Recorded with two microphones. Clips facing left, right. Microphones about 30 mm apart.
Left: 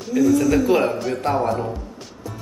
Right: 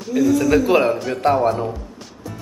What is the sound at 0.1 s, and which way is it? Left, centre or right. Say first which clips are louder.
A man's voice: right 1 dB; centre.